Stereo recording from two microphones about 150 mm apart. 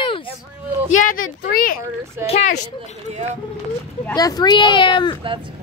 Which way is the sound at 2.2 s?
45° left (ahead or behind).